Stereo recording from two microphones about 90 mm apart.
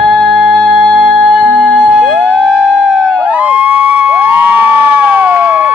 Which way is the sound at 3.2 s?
15° right (ahead or behind).